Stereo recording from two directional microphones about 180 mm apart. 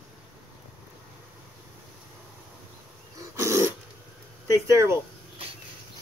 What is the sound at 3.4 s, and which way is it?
Dog, 15° right (ahead or behind).